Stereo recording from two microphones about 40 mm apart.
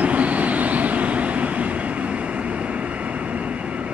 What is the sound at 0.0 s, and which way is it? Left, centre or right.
Vehicle, right.